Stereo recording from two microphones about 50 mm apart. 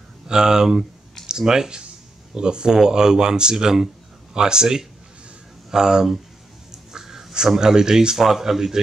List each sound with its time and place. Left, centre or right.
0.3 s speech: centre